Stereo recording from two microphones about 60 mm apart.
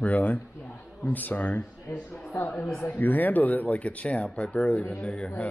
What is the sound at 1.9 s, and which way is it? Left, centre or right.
Speech, left.